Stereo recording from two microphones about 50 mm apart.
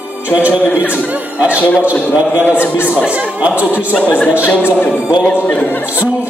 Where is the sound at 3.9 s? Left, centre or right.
Left.